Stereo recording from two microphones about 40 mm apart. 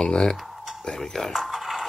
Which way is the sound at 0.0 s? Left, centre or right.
Centre.